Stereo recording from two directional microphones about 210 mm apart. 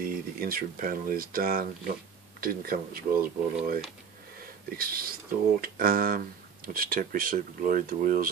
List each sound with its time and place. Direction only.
0.0 s speech: 45° right (ahead or behind)